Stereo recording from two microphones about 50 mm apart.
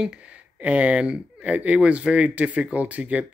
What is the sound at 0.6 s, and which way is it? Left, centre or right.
Speech, right.